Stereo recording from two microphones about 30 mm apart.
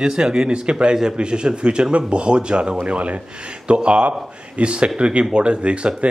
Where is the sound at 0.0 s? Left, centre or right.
Right.